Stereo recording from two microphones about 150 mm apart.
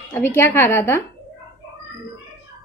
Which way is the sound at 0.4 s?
15° left (ahead or behind).